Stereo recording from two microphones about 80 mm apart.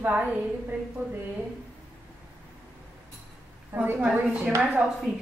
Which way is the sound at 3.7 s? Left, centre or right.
Right.